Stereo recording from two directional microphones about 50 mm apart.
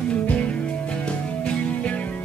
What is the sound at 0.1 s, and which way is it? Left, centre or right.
Music, left.